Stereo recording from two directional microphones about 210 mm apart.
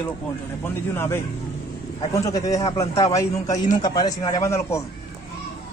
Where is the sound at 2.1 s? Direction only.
15° left (ahead or behind).